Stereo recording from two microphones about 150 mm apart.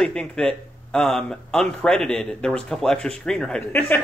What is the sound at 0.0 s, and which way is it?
Speech, 5° left (ahead or behind).